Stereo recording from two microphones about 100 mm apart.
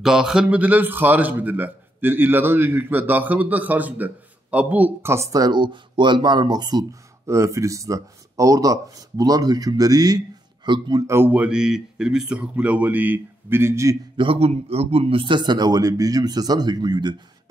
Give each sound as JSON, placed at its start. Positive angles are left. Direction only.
{"t": 0.0, "sound": "a man's voice", "side_deg": -5}
{"t": 5.5, "sound": "speech", "side_deg": -50}
{"t": 7.2, "sound": "speech", "side_deg": -30}
{"t": 11.1, "sound": "speech", "side_deg": -20}
{"t": 14.1, "sound": "speech", "side_deg": -65}